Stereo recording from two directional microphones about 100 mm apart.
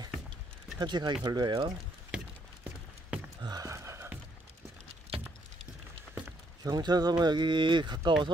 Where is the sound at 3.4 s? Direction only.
45° right (ahead or behind).